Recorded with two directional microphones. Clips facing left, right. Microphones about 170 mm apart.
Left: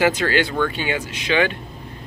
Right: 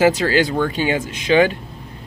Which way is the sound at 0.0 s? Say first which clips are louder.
Right 3 dB; 35° right (ahead or behind).